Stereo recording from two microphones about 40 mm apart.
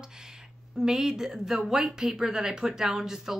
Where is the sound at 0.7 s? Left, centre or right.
Centre.